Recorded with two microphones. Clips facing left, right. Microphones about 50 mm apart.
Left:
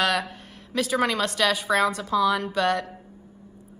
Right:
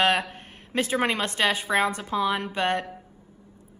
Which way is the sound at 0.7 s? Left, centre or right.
Right.